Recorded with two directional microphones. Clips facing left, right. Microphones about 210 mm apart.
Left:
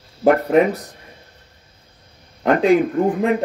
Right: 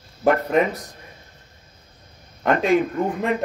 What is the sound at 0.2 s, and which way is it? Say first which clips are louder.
Speech: left 4 dB; 30° left (ahead or behind).